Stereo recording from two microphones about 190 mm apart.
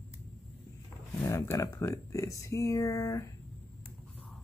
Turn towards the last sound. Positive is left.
turn(degrees=15)  # may be behind; listen again after turning